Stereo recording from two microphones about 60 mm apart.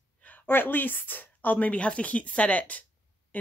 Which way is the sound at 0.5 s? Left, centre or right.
Left.